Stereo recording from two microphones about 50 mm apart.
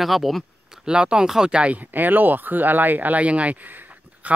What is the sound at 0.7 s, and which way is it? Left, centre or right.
Speech, centre.